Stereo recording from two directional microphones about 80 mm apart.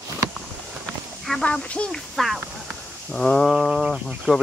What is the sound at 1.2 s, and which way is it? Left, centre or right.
Speech, centre.